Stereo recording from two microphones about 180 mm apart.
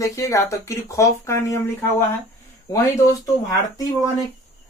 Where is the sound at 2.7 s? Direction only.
15° left (ahead or behind).